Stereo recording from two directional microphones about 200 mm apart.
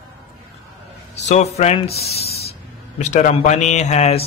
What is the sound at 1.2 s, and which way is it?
A man's voice, 35° left (ahead or behind).